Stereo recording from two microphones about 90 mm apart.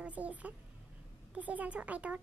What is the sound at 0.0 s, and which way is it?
Speech, 15° right (ahead or behind).